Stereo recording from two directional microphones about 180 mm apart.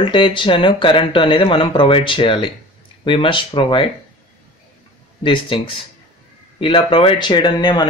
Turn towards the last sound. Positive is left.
turn(degrees=25)  # may be behind; listen again after turning